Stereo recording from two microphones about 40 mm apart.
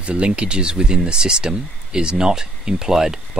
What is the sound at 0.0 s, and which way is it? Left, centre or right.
Speech, right.